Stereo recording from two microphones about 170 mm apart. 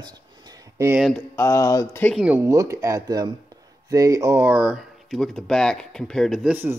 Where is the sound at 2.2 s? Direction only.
15° right (ahead or behind).